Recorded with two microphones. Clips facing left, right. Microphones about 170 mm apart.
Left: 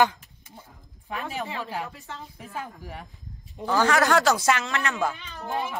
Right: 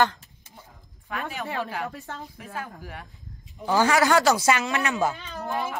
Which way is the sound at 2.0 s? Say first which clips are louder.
Right 3 dB; 40° right (ahead or behind).